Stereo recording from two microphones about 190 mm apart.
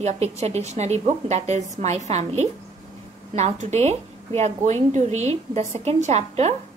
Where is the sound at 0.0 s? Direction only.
35° right (ahead or behind).